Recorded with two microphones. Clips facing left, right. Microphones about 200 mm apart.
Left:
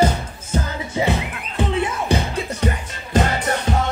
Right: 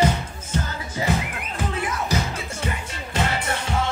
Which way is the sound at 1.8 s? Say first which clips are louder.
Left 4 dB; 30° left (ahead or behind).